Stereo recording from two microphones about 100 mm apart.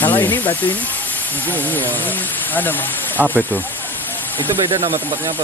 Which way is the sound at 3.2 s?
20° right (ahead or behind).